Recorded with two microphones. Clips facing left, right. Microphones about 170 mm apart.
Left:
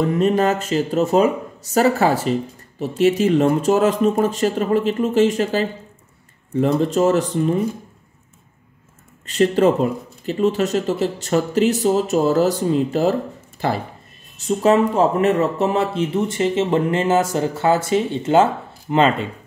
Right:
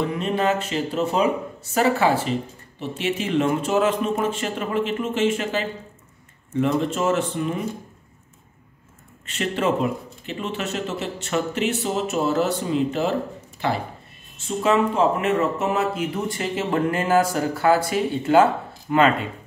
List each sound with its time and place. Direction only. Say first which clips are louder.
0.2 s speech: left 5 dB; 40° left (ahead or behind)
9.2 s speech: left 8 dB; 35° left (ahead or behind)